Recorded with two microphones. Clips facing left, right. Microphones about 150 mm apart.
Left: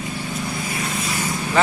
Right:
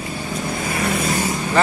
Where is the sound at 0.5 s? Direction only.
55° right (ahead or behind).